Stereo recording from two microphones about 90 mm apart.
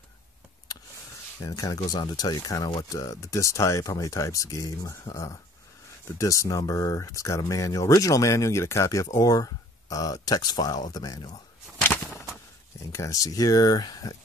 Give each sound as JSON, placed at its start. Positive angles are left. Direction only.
{"t": 1.4, "sound": "speech", "side_deg": 45}
{"t": 11.8, "sound": "a sound", "side_deg": 25}
{"t": 12.9, "sound": "speech", "side_deg": 35}